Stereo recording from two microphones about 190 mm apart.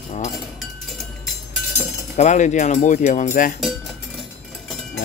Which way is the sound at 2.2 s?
40° left (ahead or behind).